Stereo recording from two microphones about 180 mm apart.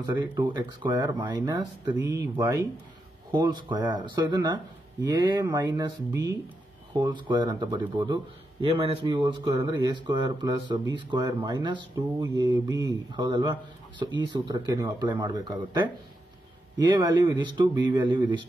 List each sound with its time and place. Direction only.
0.0 s a man's voice: 25° right (ahead or behind)
17.0 s a man's voice: 25° right (ahead or behind)